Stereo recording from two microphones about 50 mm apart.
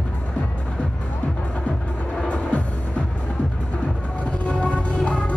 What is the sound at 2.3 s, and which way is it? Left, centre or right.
Music, left.